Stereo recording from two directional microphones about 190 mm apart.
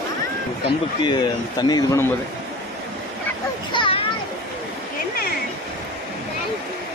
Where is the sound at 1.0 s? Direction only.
25° left (ahead or behind).